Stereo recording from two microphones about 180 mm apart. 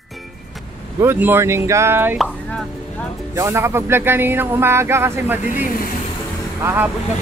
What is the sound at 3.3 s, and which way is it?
Speech, 15° right (ahead or behind).